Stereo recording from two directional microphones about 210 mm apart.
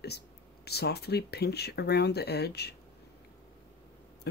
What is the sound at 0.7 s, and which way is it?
Speech, 50° left (ahead or behind).